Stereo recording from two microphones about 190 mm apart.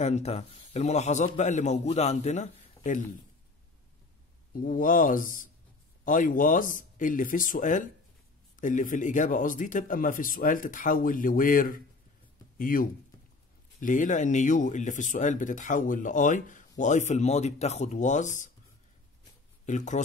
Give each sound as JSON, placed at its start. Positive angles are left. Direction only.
{"t": 0.0, "sound": "speech", "side_deg": 35}
{"t": 4.6, "sound": "speech", "side_deg": 45}
{"t": 19.6, "sound": "speech", "side_deg": 40}